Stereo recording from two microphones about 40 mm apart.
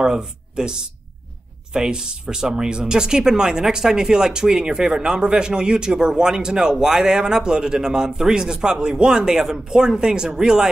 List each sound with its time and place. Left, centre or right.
0.0 s speech: centre